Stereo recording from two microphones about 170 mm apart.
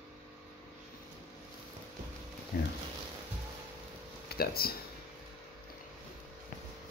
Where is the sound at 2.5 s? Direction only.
65° left (ahead or behind).